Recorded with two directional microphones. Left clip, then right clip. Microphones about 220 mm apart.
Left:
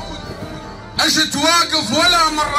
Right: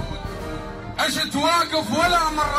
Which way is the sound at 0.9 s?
45° left (ahead or behind).